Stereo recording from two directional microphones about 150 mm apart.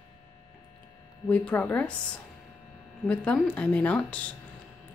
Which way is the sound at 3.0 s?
10° left (ahead or behind).